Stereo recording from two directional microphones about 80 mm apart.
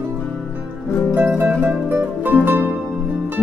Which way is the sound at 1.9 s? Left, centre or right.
Right.